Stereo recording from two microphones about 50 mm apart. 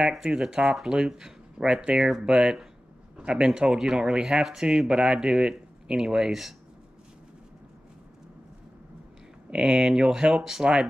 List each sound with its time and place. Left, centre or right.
0.2 s speech: centre
9.5 s speech: centre
10.6 s speech: centre